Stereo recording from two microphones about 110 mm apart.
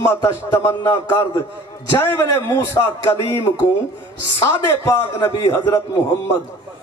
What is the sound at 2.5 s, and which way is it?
Speech, 25° left (ahead or behind).